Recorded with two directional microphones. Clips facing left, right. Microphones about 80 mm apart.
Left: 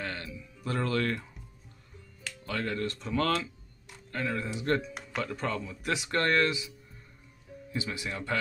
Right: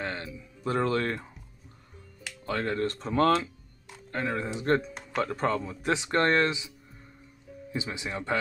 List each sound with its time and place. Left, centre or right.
0.0 s speech: right
2.4 s speech: right
7.7 s speech: right